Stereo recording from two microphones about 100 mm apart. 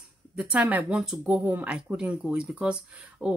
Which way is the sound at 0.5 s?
15° right (ahead or behind).